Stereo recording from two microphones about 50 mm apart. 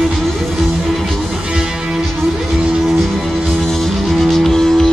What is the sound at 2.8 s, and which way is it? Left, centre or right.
Music, centre.